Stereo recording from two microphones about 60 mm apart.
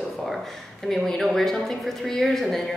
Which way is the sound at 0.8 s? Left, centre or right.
Centre.